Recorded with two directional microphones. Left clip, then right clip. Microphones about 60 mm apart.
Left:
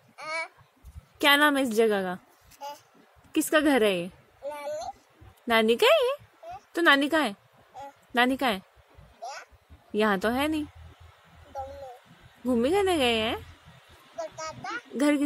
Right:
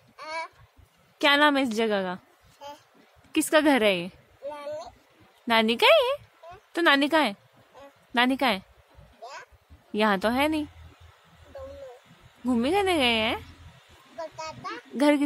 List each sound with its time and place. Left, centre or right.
0.2 s babbling: right
1.1 s a woman's voice: left
3.3 s a woman's voice: centre
4.5 s a sound: right
5.5 s a woman's voice: centre
9.2 s a sound: right
9.9 s a woman's voice: centre
12.6 s a woman's voice: centre
14.1 s a sound: right
15.0 s a woman's voice: centre